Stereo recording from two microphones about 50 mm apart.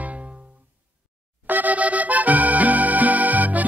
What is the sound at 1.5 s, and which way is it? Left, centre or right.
Music, right.